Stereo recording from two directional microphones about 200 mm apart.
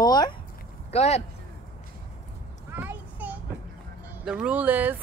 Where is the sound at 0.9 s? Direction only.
30° left (ahead or behind).